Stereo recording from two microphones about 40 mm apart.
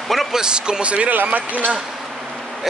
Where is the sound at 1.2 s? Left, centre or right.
Right.